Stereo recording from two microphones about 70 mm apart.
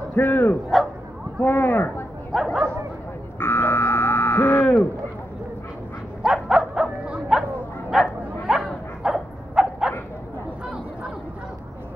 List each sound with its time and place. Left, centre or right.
0.1 s speech: left
2.3 s bow-wow: centre
3.3 s buzzer: left
6.2 s dog: centre
7.9 s bow-wow: centre